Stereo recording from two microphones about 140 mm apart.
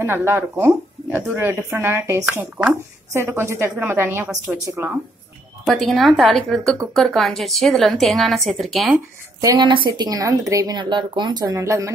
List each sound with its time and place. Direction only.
0.0 s speech: 15° right (ahead or behind)
5.7 s a woman's voice: centre (ahead or behind)
9.4 s speech: 30° right (ahead or behind)